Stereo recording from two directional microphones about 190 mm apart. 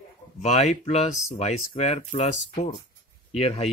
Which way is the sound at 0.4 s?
35° left (ahead or behind).